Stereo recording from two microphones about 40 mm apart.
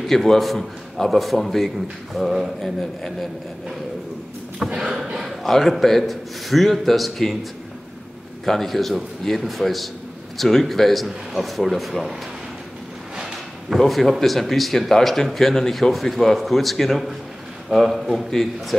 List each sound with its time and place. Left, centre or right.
0.0 s speech: centre
4.6 s a sound: right
5.1 s a sound: centre
5.4 s speech: centre
8.5 s speech: centre
13.7 s speech: centre